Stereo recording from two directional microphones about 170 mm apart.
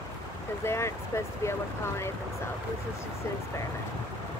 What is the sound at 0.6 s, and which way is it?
Speech, 15° left (ahead or behind).